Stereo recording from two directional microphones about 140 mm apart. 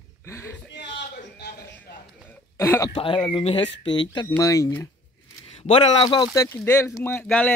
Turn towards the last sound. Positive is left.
turn(degrees=10)  # may be behind; listen again after turning